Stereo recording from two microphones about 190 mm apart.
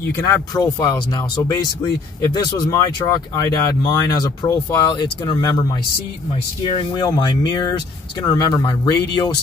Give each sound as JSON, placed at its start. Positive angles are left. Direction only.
{"t": 0.0, "sound": "speech", "side_deg": 15}
{"t": 6.8, "sound": "speech", "side_deg": 25}